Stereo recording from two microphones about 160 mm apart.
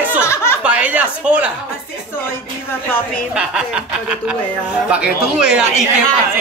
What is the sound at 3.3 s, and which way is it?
Speech, 5° right (ahead or behind).